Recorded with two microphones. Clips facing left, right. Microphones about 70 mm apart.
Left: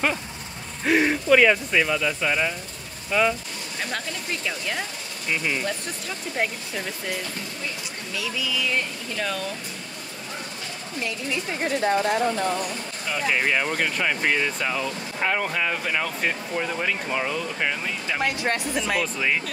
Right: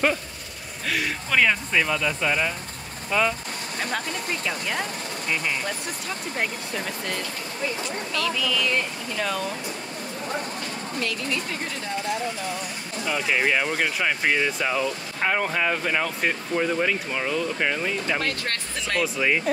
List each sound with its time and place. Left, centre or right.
0.8 s speech: left
1.3 s speech: centre
4.5 s speech: centre
11.0 s speech: left
13.0 s speech: centre
18.2 s speech: centre
18.8 s speech: centre